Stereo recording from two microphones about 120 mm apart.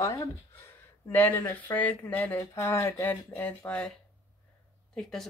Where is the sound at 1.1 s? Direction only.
15° left (ahead or behind).